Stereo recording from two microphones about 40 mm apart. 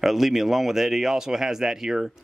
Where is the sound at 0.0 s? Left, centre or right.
Centre.